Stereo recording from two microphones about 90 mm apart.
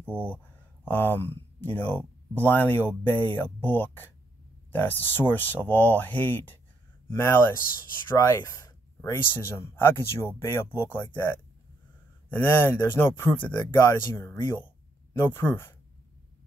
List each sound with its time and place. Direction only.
0.0 s speech: 15° right (ahead or behind)
0.8 s speech: 20° left (ahead or behind)
8.2 s a sound: 30° left (ahead or behind)
9.1 s speech: 25° left (ahead or behind)